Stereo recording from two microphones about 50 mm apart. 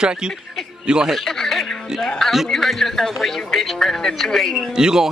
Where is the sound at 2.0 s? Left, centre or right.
Centre.